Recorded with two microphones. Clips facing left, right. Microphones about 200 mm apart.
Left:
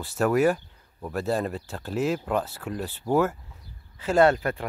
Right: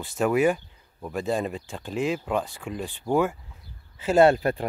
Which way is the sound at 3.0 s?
5° left (ahead or behind).